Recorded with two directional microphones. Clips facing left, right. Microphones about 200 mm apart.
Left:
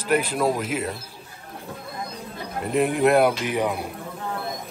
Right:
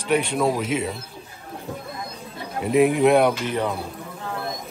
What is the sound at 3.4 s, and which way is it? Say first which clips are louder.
Speech: left 1 dB; 15° left (ahead or behind).